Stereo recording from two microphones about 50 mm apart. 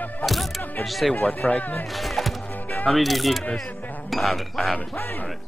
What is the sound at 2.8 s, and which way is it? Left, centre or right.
Speech, centre.